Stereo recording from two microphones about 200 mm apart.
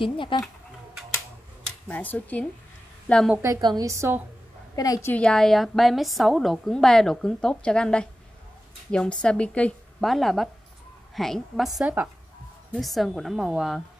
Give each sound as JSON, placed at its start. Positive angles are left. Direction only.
{"t": 0.0, "sound": "speech", "side_deg": 25}
{"t": 1.9, "sound": "a woman's voice", "side_deg": 10}
{"t": 3.4, "sound": "a woman's voice", "side_deg": -20}
{"t": 4.7, "sound": "a woman's voice", "side_deg": 15}
{"t": 9.2, "sound": "a woman's voice", "side_deg": 5}